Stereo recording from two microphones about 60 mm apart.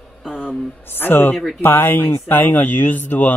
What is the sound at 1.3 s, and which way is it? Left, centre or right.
Speech, centre.